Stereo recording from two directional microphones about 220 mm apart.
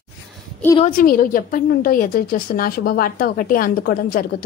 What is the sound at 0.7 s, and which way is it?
A woman's voice, 35° left (ahead or behind).